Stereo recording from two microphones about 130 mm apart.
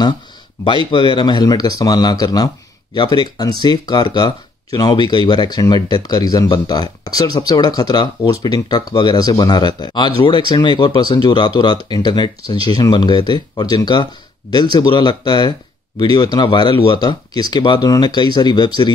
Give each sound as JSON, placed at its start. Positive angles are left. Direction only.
{"t": 0.9, "sound": "speech", "side_deg": 35}